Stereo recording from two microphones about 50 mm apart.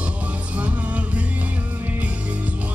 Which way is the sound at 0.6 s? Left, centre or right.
Right.